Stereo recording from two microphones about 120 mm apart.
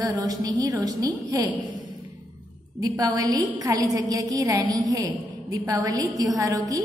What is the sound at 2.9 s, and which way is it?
A woman's voice, 30° right (ahead or behind).